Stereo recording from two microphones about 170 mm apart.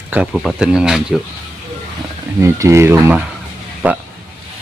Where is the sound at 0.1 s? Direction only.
5° right (ahead or behind).